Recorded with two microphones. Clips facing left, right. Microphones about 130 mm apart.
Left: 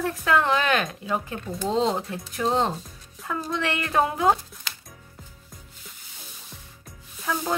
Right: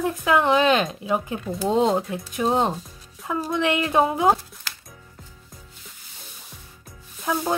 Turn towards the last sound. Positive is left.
turn(degrees=-15)  # may be behind; listen again after turning